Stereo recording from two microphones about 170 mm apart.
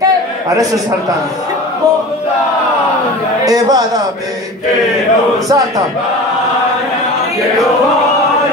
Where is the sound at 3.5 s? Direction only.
20° right (ahead or behind).